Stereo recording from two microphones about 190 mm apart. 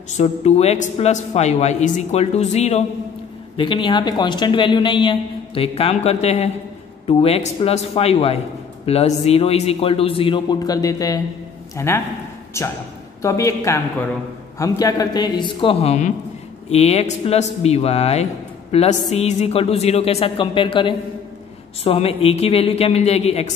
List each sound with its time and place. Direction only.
0.2 s a man's voice: 35° left (ahead or behind)